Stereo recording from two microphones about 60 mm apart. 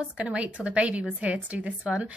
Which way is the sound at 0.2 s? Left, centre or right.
Centre.